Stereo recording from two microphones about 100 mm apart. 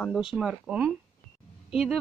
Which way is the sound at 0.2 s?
5° right (ahead or behind).